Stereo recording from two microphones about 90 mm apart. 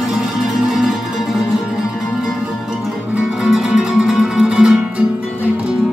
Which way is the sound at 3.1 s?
10° right (ahead or behind).